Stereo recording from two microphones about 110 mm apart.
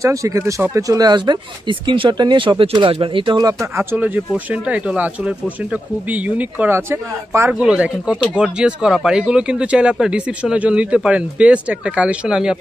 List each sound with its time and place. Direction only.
0.0 s speech: 30° right (ahead or behind)
3.7 s speech: 15° right (ahead or behind)